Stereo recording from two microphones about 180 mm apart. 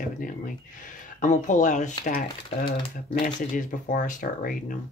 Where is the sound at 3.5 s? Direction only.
45° left (ahead or behind).